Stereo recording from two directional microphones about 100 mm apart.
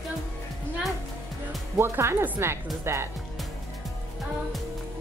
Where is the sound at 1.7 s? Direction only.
25° right (ahead or behind).